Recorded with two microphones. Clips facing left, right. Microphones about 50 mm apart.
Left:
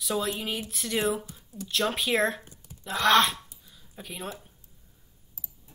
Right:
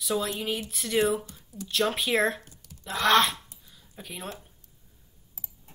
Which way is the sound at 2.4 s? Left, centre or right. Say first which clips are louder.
Left 1 dB; left.